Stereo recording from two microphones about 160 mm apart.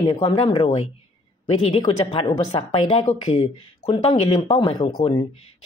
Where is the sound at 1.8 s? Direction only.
30° left (ahead or behind).